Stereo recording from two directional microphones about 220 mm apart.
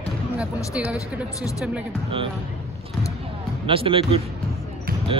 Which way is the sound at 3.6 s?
25° right (ahead or behind).